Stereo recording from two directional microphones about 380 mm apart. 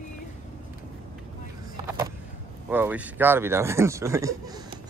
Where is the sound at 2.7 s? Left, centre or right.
Centre.